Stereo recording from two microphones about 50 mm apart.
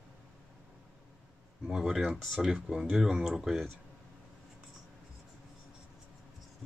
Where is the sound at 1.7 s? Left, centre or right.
Centre.